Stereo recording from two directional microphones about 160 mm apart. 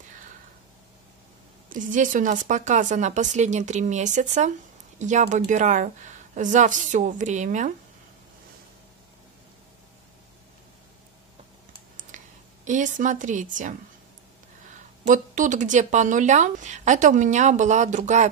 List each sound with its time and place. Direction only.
1.7 s speech: 55° right (ahead or behind)
12.1 s a sound: 50° right (ahead or behind)
12.6 s speech: 50° right (ahead or behind)
15.0 s speech: 55° right (ahead or behind)